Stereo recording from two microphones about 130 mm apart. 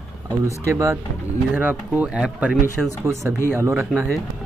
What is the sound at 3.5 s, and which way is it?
Speech, 20° right (ahead or behind).